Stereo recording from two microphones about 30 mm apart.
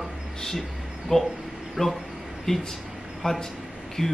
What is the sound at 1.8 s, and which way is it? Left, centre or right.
A man's voice, centre.